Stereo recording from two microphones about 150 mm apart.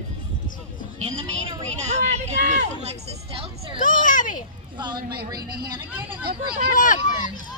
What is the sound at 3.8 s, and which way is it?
Speech, 60° left (ahead or behind).